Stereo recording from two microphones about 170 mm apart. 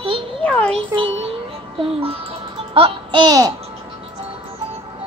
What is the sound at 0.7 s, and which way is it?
Speech, 30° right (ahead or behind).